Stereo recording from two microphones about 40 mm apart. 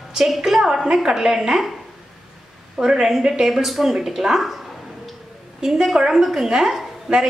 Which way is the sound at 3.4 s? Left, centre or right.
Centre.